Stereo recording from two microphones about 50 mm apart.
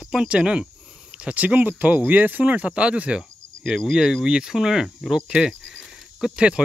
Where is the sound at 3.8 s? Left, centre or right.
Centre.